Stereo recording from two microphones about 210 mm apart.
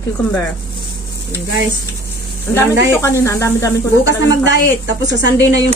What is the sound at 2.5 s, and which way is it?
A woman's voice, 15° left (ahead or behind).